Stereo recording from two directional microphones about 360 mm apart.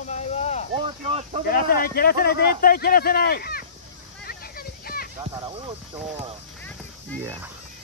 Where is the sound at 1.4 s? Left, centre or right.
Left.